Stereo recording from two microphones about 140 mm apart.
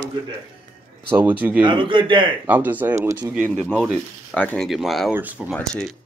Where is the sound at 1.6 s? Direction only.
35° right (ahead or behind).